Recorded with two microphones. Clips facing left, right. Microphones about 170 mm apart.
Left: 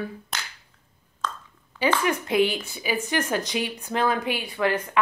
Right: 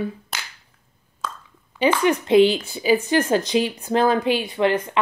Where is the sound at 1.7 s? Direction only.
25° right (ahead or behind).